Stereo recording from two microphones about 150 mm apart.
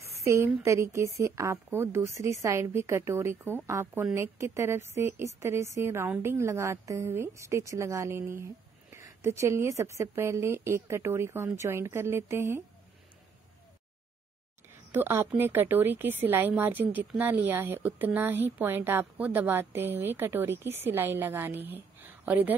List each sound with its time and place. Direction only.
0.2 s a woman's voice: 20° right (ahead or behind)
14.7 s a woman's voice: 15° right (ahead or behind)